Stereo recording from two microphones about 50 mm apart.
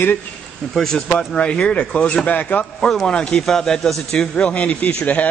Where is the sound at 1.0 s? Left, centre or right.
Left.